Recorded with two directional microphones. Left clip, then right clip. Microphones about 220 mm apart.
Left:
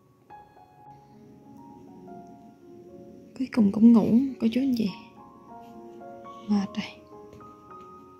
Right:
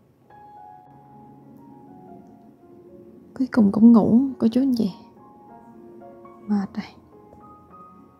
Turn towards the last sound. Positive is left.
turn(degrees=-15)  # may be behind; listen again after turning